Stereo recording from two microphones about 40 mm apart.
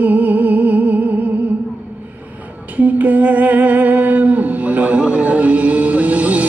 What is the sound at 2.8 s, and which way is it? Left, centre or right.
Music, right.